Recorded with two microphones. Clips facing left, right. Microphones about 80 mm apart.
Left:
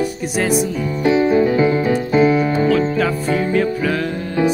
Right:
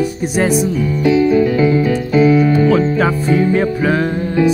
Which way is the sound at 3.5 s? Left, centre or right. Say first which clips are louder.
Right 3 dB; right.